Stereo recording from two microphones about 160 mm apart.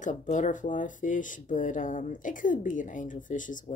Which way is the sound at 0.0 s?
50° left (ahead or behind).